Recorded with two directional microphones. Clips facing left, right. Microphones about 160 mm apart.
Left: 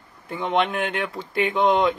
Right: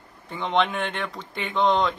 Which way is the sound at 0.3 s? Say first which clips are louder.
Left 1 dB; centre (ahead or behind).